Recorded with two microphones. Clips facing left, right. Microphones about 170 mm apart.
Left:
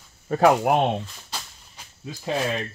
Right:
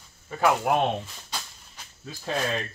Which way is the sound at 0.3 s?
40° left (ahead or behind).